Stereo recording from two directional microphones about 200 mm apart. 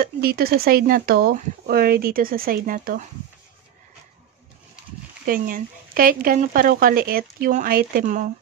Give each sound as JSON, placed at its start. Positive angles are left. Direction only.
{"t": 0.0, "sound": "speech", "side_deg": -50}
{"t": 5.2, "sound": "speech", "side_deg": -45}